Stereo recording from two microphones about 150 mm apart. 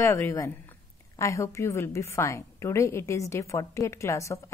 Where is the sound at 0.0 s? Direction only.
20° left (ahead or behind).